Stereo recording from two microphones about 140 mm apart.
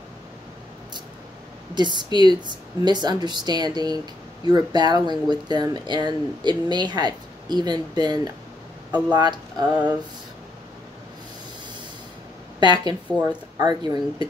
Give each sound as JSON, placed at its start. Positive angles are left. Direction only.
{"t": 1.8, "sound": "speech", "side_deg": -30}
{"t": 12.5, "sound": "speech", "side_deg": -30}